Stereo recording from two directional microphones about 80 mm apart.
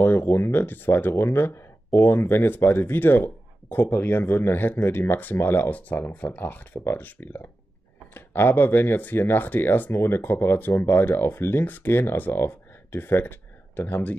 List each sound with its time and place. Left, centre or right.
0.0 s speech: left